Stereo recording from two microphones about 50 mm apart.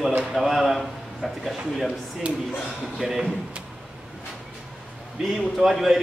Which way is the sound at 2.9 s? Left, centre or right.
Centre.